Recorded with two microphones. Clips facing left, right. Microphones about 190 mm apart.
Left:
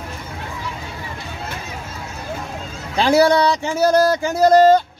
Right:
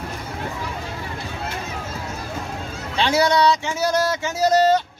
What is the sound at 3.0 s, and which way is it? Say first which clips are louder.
Speech: left 4 dB; 35° left (ahead or behind).